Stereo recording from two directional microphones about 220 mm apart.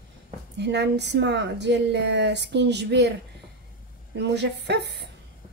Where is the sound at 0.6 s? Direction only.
50° right (ahead or behind).